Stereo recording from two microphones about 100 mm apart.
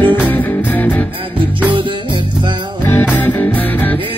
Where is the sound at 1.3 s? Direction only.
55° right (ahead or behind).